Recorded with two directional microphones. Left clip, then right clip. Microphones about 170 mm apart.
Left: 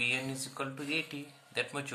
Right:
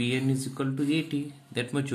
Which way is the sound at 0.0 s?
10° right (ahead or behind).